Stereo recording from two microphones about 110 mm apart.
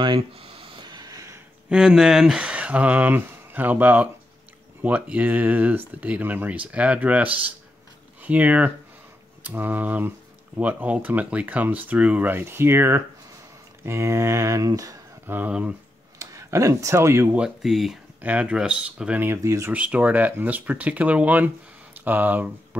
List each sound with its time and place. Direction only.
0.0 s a sound: 50° right (ahead or behind); by 1.4 s 30° right (ahead or behind)
1.7 s speech: 5° right (ahead or behind); by 15.0 s 35° right (ahead or behind)
15.2 s speech: 15° right (ahead or behind)
16.2 s speech: 30° right (ahead or behind)
17.4 s speech: 5° right (ahead or behind); by 19.7 s 25° right (ahead or behind)
19.7 s speech: 15° right (ahead or behind)